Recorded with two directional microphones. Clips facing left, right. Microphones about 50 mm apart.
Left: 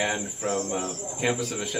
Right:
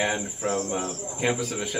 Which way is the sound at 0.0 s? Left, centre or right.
Centre.